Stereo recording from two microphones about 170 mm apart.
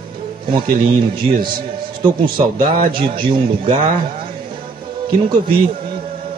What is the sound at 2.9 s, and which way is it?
Speech, 30° right (ahead or behind).